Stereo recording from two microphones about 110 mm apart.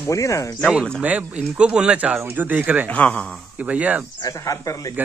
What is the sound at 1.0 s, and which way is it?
Speech, 10° right (ahead or behind).